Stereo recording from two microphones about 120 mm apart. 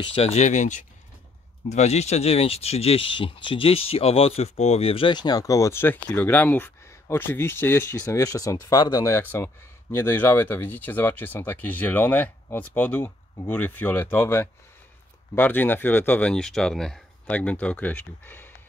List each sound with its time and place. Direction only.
0.0 s speech: 50° left (ahead or behind); by 0.8 s 85° left
1.7 s speech: 65° left (ahead or behind); by 18.5 s 15° left (ahead or behind)